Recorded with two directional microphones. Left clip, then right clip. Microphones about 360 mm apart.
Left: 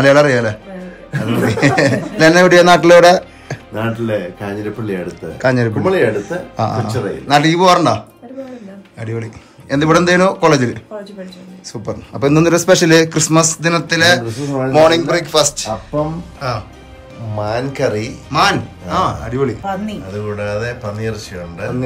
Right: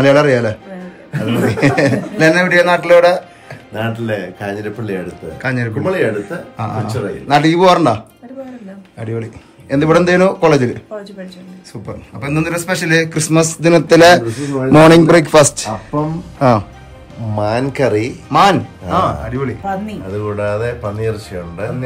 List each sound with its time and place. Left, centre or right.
0.0 s a man's voice: centre
3.7 s a man's voice: centre
9.0 s a man's voice: centre
11.8 s a man's voice: centre; by 18.1 s right
18.3 s a man's voice: centre
20.3 s speech: centre